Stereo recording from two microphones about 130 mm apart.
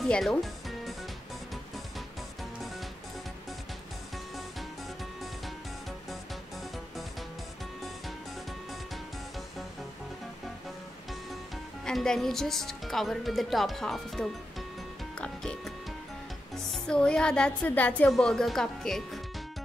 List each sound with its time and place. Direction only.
0.0 s music: 5° left (ahead or behind)
11.8 s speech: 5° left (ahead or behind)
15.1 s music: 5° left (ahead or behind)
16.7 s speech: 5° left (ahead or behind)